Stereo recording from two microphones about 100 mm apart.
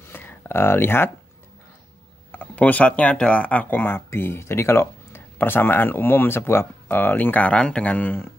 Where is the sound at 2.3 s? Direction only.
15° left (ahead or behind).